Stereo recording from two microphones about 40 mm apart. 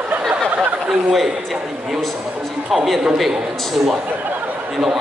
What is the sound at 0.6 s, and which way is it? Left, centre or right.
Speech, centre.